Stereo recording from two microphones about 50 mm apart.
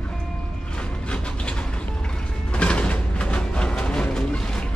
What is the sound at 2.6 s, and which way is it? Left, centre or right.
Music, left.